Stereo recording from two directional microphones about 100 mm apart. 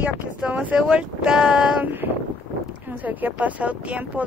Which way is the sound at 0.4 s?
15° right (ahead or behind).